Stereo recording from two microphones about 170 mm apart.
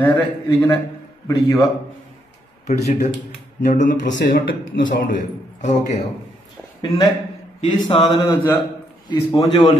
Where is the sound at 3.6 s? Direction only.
45° left (ahead or behind).